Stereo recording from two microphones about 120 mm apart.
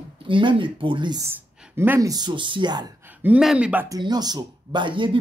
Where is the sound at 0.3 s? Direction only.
45° right (ahead or behind).